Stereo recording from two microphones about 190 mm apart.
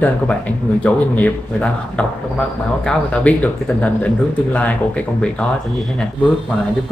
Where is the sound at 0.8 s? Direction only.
10° left (ahead or behind).